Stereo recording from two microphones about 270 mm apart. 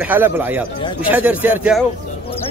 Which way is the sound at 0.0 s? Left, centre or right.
Centre.